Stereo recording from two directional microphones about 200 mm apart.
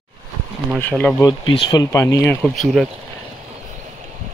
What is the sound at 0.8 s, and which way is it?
Speech, 5° left (ahead or behind).